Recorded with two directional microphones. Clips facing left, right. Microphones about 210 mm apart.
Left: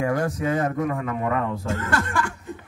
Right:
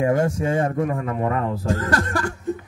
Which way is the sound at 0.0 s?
25° right (ahead or behind).